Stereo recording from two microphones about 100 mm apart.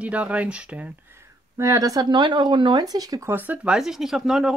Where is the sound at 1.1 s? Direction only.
30° right (ahead or behind).